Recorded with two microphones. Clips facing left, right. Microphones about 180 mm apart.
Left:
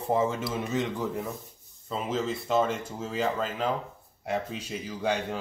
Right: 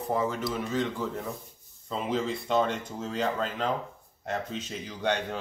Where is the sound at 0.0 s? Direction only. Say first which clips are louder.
Left 2 dB; 25° left (ahead or behind).